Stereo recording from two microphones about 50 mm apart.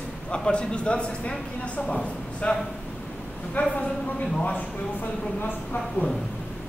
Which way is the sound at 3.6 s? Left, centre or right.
Left.